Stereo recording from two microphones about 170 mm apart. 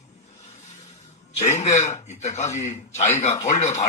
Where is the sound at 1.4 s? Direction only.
40° left (ahead or behind).